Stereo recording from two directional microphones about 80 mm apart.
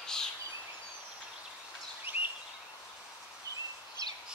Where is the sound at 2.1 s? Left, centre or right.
Right.